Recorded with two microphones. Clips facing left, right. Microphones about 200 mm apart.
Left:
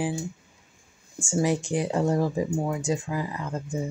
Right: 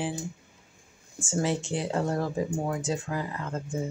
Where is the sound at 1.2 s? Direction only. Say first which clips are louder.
Left 3 dB; 15° left (ahead or behind).